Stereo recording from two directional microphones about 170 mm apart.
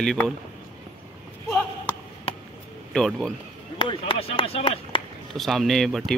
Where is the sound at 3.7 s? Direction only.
30° left (ahead or behind).